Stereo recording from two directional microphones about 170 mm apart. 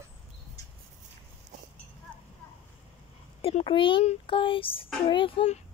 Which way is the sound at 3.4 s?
30° left (ahead or behind).